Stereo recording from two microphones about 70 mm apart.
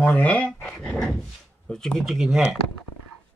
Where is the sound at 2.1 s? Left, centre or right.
Centre.